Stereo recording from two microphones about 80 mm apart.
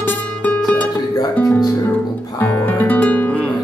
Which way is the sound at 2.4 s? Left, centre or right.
Left.